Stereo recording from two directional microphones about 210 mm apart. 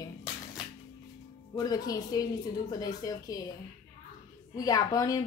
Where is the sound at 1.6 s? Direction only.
20° left (ahead or behind).